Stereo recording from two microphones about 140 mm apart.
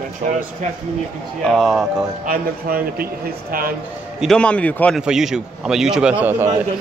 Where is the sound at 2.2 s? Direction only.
90° right.